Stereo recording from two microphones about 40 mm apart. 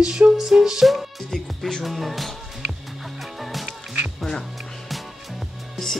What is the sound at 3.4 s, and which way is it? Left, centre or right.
Music, centre.